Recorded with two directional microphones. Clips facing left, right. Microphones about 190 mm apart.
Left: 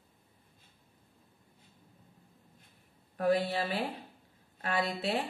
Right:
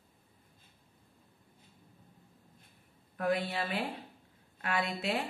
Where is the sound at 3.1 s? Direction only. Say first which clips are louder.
Left 3 dB; 35° left (ahead or behind).